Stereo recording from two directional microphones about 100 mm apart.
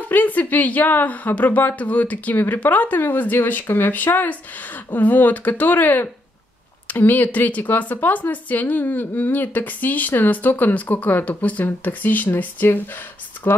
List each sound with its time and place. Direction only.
0.1 s speech: 15° left (ahead or behind)